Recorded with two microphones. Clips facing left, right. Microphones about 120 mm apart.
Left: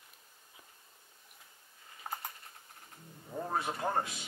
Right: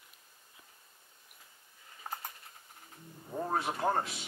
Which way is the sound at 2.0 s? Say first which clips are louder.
Left 1 dB; 10° left (ahead or behind).